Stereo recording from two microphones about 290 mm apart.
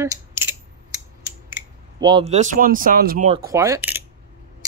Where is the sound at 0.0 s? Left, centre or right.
Centre; by 3.3 s right.